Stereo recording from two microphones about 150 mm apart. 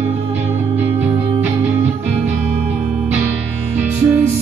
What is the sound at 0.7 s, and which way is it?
Music, 10° right (ahead or behind).